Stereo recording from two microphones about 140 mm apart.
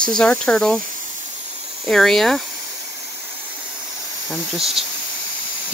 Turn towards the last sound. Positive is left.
turn(degrees=0)  # may be behind; listen again after turning